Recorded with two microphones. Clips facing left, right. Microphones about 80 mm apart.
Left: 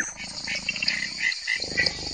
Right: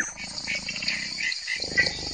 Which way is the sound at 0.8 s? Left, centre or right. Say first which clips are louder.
Left 4 dB; left.